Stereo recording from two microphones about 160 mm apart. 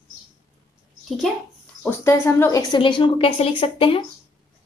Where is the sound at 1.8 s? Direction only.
15° left (ahead or behind); by 4.0 s 35° left (ahead or behind).